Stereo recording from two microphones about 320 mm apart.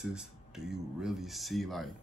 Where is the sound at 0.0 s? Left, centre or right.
Centre.